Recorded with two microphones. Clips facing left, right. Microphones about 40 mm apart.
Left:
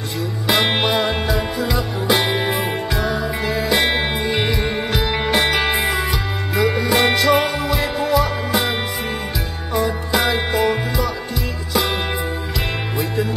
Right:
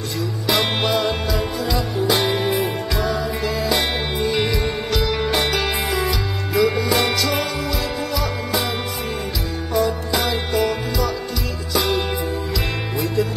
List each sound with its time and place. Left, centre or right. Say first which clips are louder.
0.5 s music: left 2 dB; left
5.6 s music: left 3 dB; left
9.8 s music: left 1 dB; left